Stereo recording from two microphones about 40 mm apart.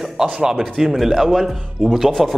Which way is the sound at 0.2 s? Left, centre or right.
Centre.